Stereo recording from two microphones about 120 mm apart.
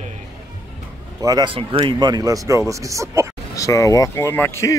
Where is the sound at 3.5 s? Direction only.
25° left (ahead or behind).